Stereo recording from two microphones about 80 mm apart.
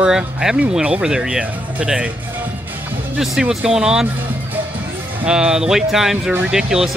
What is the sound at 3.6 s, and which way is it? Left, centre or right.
Speech, centre.